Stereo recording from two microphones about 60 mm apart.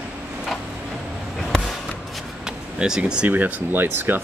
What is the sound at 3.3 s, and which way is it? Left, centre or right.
Speech, right.